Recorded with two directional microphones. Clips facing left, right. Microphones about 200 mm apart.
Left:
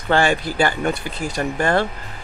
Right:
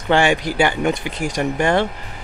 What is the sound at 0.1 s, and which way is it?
Speech, 15° right (ahead or behind).